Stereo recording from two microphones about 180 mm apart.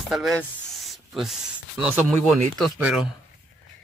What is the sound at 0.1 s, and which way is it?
Speech, centre (ahead or behind).